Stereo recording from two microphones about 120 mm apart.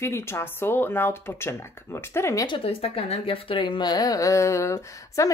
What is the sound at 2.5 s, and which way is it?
Speech, 50° left (ahead or behind).